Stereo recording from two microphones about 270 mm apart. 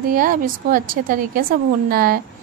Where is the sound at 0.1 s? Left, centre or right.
Right.